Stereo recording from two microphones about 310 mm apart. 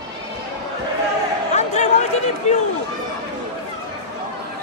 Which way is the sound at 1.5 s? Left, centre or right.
Left.